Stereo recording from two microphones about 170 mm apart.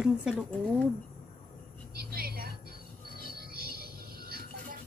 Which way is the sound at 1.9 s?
60° right (ahead or behind).